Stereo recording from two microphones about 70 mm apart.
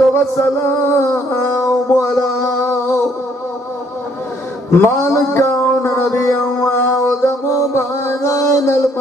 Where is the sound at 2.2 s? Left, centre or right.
Left.